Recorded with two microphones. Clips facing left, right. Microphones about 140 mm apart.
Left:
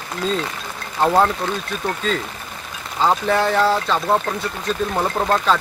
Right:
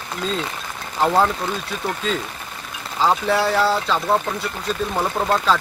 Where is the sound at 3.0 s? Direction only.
5° right (ahead or behind).